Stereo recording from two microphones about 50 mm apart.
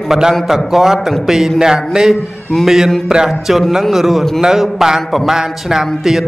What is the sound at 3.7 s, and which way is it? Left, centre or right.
Speech, centre.